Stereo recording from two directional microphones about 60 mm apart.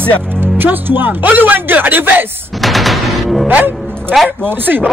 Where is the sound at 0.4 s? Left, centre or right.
Right.